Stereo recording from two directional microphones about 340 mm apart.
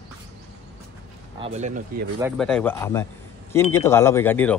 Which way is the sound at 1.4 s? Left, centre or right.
Centre.